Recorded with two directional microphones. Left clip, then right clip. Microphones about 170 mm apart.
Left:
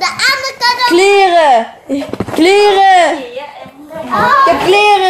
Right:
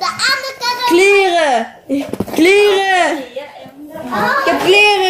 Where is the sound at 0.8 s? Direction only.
15° right (ahead or behind).